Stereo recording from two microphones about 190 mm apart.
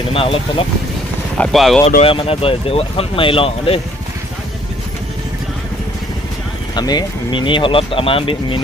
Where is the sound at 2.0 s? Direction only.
30° left (ahead or behind).